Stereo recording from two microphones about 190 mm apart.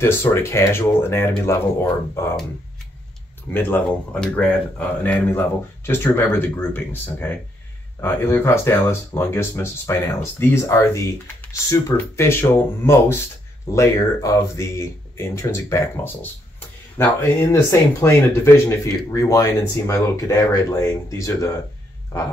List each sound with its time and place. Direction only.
0.0 s speech: 15° left (ahead or behind)
3.5 s speech: 10° left (ahead or behind)